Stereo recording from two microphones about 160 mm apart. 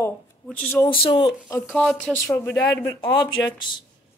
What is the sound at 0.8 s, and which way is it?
Speech, 30° left (ahead or behind).